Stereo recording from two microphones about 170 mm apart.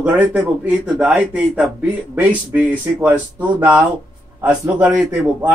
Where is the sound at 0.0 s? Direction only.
10° right (ahead or behind).